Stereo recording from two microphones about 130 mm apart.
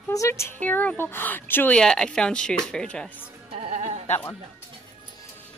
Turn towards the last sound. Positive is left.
turn(degrees=15)  # may be behind; listen again after turning